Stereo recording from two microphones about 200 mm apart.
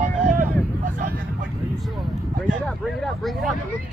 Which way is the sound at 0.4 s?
40° right (ahead or behind).